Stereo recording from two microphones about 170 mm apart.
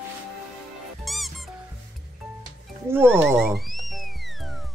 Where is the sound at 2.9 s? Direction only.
10° right (ahead or behind).